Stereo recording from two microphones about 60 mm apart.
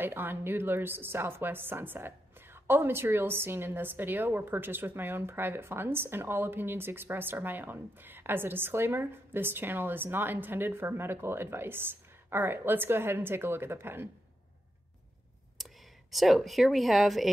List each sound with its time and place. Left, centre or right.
0.0 s a woman's voice: right
15.5 s speech: centre